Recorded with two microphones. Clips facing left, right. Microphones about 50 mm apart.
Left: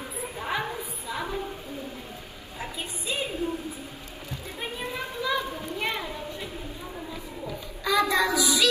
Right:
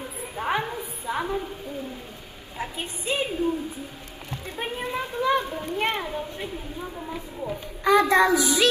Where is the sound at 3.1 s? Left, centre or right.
Right.